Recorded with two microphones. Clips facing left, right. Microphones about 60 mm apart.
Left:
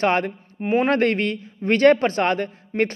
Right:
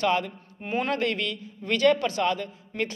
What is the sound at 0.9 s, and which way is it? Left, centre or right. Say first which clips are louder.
A man's voice: left 7 dB; left.